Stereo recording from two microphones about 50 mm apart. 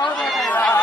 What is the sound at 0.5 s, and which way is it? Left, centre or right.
Run, left.